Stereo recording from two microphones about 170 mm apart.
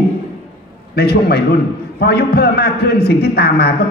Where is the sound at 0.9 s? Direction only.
70° left (ahead or behind).